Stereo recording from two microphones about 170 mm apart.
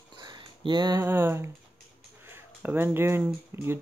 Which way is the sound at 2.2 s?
15° right (ahead or behind).